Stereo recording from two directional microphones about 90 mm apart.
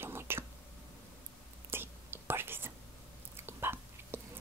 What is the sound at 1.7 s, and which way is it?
Whispering, 25° right (ahead or behind).